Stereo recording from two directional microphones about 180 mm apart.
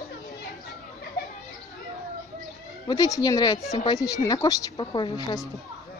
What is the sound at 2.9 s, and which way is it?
A woman's voice, 20° left (ahead or behind).